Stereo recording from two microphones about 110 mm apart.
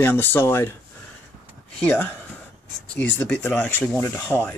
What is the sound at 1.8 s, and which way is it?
Speech, 20° left (ahead or behind).